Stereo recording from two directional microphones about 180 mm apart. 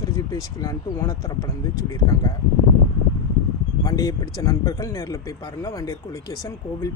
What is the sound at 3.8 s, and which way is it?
Speech, 20° left (ahead or behind).